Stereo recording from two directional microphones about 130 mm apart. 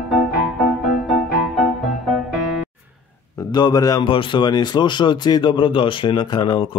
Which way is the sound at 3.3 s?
30° left (ahead or behind).